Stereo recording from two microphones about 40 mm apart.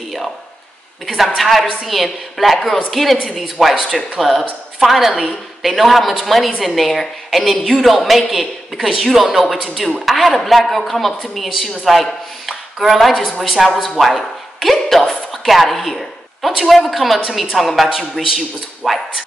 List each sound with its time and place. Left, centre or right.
1.0 s a woman's voice: centre
15.8 s a sound: centre
16.6 s speech: centre